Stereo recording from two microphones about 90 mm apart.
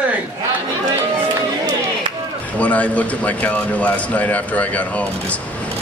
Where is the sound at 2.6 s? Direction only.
15° left (ahead or behind).